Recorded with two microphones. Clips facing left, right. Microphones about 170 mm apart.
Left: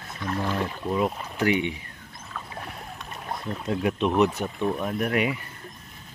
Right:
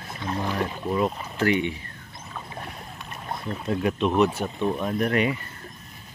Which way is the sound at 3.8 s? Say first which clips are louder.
Even; 10° left (ahead or behind).